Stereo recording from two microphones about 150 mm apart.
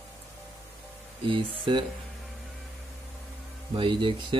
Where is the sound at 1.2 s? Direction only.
35° right (ahead or behind).